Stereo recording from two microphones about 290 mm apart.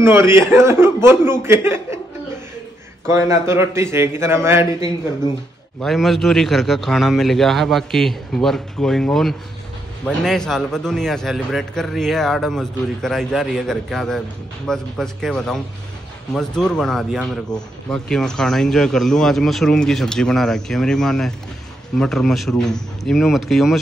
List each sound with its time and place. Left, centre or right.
0.0 s a man's voice: centre
3.1 s a man's voice: centre
5.8 s speech: centre